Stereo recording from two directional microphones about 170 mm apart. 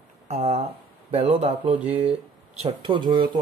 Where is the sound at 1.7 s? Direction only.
10° right (ahead or behind).